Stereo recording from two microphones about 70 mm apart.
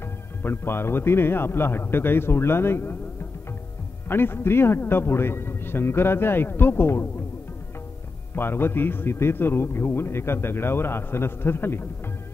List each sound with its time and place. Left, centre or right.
0.4 s speech: left
4.1 s speech: left
8.4 s speech: left